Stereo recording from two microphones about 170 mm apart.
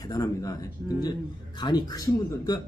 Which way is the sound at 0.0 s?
20° left (ahead or behind).